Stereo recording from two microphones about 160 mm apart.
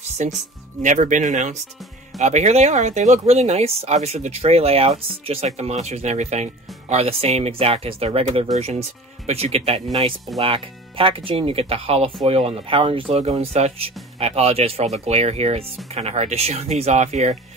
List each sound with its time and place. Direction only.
0.2 s speech: 50° right (ahead or behind)